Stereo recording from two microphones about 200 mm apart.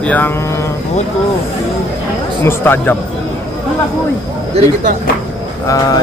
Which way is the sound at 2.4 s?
10° left (ahead or behind).